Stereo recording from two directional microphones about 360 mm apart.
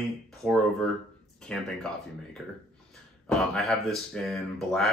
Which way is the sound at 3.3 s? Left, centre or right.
Centre.